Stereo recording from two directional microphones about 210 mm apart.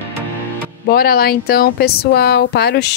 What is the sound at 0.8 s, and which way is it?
Speech, 45° left (ahead or behind).